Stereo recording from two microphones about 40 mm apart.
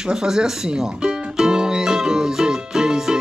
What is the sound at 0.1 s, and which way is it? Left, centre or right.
Music, centre.